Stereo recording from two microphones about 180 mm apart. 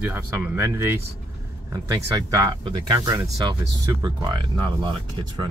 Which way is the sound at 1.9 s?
20° right (ahead or behind).